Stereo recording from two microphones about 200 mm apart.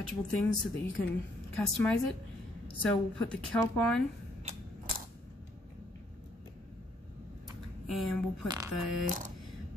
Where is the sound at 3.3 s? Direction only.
5° left (ahead or behind).